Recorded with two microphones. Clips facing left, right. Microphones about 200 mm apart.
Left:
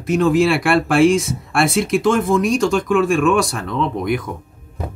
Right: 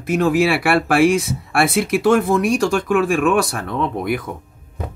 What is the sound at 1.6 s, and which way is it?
Speech, 60° right (ahead or behind).